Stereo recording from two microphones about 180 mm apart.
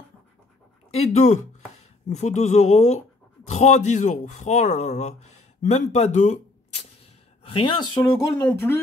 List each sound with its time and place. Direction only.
0.9 s speech: 40° left (ahead or behind)
7.4 s a woman's voice: 30° left (ahead or behind)
8.4 s speech: 10° left (ahead or behind)